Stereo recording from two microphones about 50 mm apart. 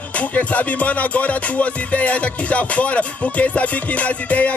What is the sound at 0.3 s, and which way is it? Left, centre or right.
Music, left.